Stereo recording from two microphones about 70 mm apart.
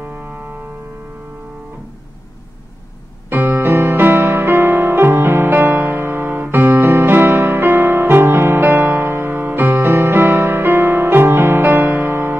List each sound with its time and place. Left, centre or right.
3.3 s music: right